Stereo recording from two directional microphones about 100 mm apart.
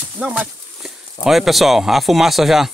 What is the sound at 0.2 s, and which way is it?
Speech, 10° right (ahead or behind).